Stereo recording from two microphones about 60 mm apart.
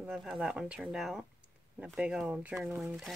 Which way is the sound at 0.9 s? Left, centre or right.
Centre.